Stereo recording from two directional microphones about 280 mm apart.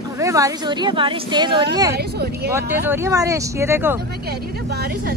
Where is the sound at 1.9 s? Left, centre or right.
Right.